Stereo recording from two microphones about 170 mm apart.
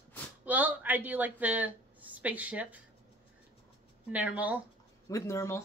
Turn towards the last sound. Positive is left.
turn(degrees=15)  # may be behind; listen again after turning